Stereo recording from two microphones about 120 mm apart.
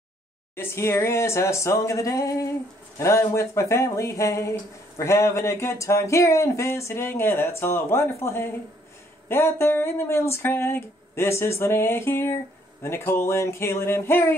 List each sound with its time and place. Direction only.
0.6 s speech: 20° left (ahead or behind)